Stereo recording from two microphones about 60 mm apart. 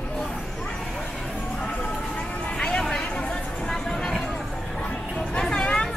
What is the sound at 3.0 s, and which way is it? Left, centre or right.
Chatter, centre.